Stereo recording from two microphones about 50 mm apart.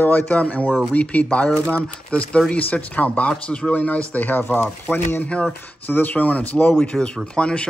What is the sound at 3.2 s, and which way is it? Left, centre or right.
Speech, centre.